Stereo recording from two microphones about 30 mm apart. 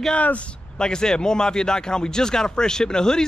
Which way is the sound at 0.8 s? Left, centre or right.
Left.